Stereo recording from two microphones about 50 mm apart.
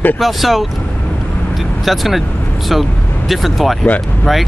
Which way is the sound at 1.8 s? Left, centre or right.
Centre.